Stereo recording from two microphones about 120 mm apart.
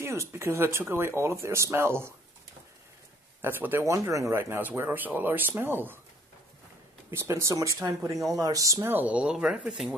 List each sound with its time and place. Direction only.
0.0 s speech: 20° right (ahead or behind)
3.4 s speech: 15° right (ahead or behind)
7.1 s speech: 20° right (ahead or behind)
8.9 s speech: 10° right (ahead or behind)